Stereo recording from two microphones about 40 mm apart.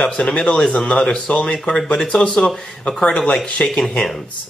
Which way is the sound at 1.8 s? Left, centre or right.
Left.